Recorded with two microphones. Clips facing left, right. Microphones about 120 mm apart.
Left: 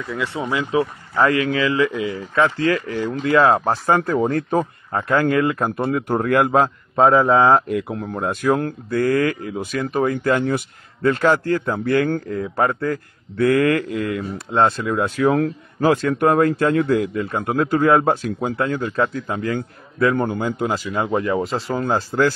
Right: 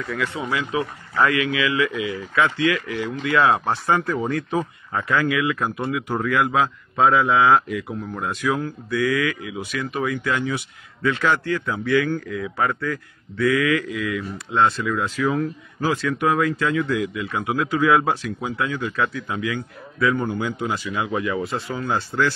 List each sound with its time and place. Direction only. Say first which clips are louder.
0.0 s speech: left 1 dB; 25° left (ahead or behind); by 15.3 s 55° left (ahead or behind)
15.3 s a man's voice: left 4 dB; 80° left
15.9 s speech: left 5 dB; 45° left (ahead or behind)